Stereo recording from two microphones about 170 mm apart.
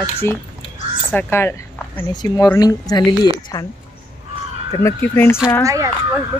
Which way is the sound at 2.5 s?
20° left (ahead or behind).